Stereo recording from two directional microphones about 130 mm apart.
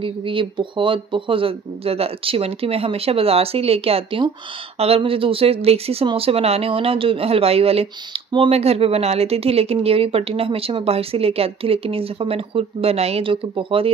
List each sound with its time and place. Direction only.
0.0 s speech: 40° right (ahead or behind)